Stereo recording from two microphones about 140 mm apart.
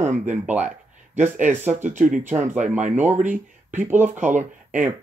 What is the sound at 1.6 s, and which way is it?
Speech, 55° right (ahead or behind).